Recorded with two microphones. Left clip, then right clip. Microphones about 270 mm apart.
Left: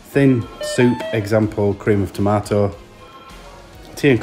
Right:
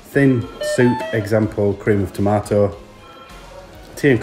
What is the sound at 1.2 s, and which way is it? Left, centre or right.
Speech, centre.